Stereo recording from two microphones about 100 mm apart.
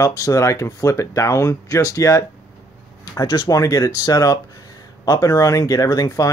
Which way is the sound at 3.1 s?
45° left (ahead or behind).